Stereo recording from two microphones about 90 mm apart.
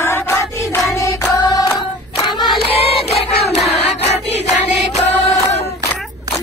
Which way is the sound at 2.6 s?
90° left.